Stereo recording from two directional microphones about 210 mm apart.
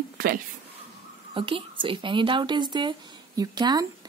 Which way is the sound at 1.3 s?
25° right (ahead or behind).